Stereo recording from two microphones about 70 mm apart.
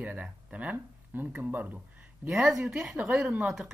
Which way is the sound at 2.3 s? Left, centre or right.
Centre.